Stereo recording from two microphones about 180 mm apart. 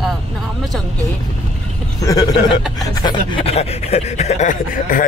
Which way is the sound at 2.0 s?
20° left (ahead or behind).